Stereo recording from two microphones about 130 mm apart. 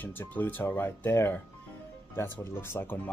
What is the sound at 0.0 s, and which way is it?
Speech, 15° left (ahead or behind).